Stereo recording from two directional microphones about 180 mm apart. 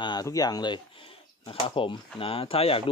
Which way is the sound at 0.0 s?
20° left (ahead or behind).